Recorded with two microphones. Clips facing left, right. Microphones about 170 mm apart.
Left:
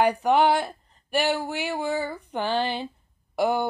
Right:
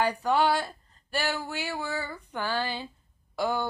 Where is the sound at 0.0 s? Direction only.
20° left (ahead or behind).